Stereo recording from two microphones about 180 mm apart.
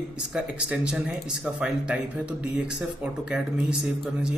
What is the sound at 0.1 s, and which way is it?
Speech, 5° right (ahead or behind).